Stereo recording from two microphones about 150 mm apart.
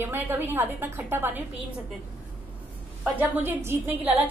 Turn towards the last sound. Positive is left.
turn(degrees=-15)  # may be behind; listen again after turning